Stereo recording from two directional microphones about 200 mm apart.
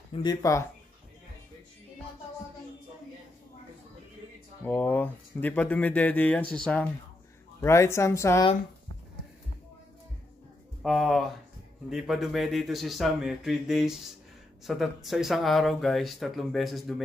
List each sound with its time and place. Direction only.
0.1 s speech: 20° left (ahead or behind)
4.6 s speech: 10° left (ahead or behind)
10.8 s speech: centre (ahead or behind)